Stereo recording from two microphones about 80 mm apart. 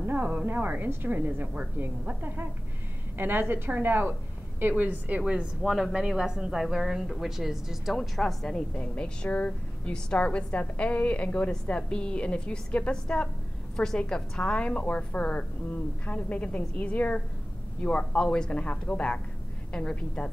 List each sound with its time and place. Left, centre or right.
0.2 s a woman's voice: centre
5.6 s a woman's voice: centre